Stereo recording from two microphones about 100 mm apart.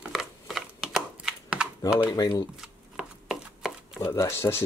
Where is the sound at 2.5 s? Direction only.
5° right (ahead or behind).